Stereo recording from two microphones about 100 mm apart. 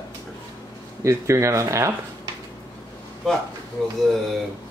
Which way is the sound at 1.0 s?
30° right (ahead or behind).